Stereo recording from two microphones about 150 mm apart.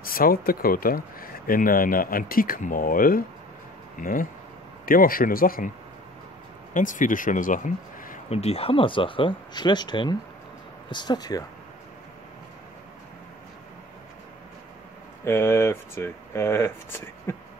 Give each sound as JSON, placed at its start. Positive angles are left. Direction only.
{"t": 0.0, "sound": "speech", "side_deg": 75}
{"t": 6.7, "sound": "speech", "side_deg": 60}
{"t": 8.3, "sound": "speech", "side_deg": 45}
{"t": 15.2, "sound": "speech", "side_deg": 15}